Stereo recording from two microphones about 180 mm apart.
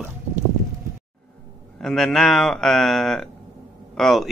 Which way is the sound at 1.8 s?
5° left (ahead or behind).